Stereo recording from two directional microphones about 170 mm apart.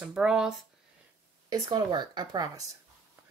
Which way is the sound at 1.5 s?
25° right (ahead or behind).